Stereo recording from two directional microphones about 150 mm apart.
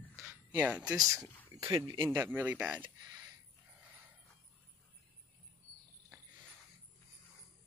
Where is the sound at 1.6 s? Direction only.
25° right (ahead or behind).